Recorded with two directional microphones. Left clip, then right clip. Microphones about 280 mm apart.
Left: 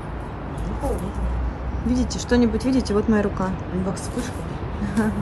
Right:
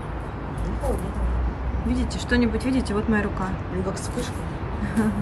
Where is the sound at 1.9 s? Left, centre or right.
Centre.